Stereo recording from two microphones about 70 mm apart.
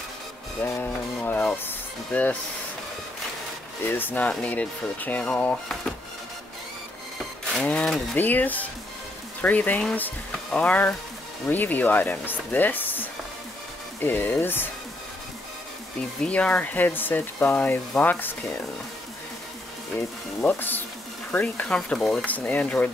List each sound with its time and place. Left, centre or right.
0.6 s speech: left
3.8 s speech: left
7.7 s speech: centre
8.2 s speech: left
16.2 s speech: centre
20.4 s speech: left; by 22.2 s centre
22.2 s speech: left